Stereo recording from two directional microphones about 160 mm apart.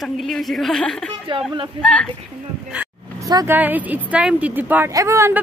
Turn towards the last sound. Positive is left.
turn(degrees=-15)  # may be behind; listen again after turning